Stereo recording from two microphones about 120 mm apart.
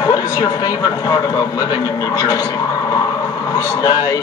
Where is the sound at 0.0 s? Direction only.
30° left (ahead or behind).